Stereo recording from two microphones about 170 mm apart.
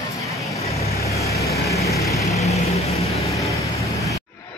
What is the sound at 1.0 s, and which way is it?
Vehicle, 20° left (ahead or behind).